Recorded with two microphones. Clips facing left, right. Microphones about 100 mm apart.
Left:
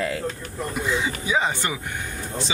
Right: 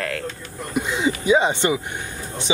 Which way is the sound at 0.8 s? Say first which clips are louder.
Right 4 dB; 20° right (ahead or behind).